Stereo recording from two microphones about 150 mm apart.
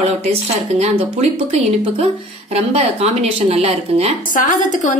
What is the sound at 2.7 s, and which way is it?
Speech, 45° right (ahead or behind).